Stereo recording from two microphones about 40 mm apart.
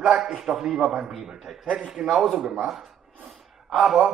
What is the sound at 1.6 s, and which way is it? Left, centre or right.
Speech, right.